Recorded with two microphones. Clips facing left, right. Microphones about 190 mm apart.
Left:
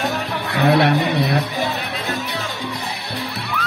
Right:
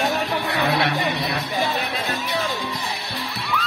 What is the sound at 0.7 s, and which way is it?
Speech, 55° left (ahead or behind).